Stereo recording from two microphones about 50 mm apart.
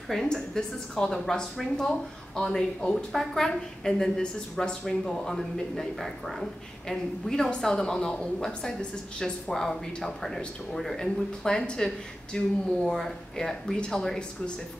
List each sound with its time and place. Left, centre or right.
0.1 s a woman's voice: centre
2.8 s speech: left
3.1 s a woman's voice: centre